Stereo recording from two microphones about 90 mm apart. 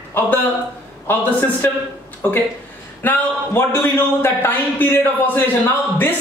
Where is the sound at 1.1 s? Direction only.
20° left (ahead or behind).